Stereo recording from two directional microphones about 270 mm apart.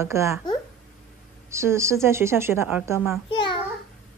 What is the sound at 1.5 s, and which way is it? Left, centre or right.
Speech, centre.